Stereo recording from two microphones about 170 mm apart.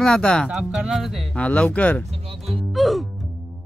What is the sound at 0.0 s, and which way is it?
Speech, 5° left (ahead or behind).